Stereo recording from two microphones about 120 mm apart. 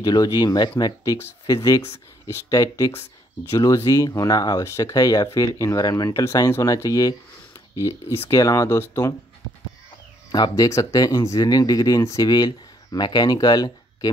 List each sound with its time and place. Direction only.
0.0 s speech: 35° left (ahead or behind)
10.3 s speech: 30° left (ahead or behind)